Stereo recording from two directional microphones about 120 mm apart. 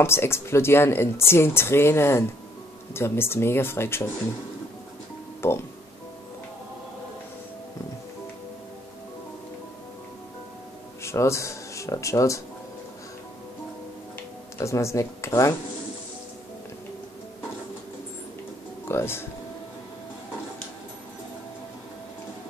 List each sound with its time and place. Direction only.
0.0 s speech: 20° left (ahead or behind)
5.4 s speech: 20° left (ahead or behind)
11.0 s speech: 25° left (ahead or behind)
14.6 s speech: 25° left (ahead or behind)
18.9 s speech: 20° left (ahead or behind)